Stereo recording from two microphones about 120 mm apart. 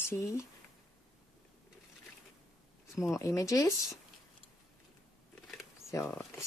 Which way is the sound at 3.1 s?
25° left (ahead or behind).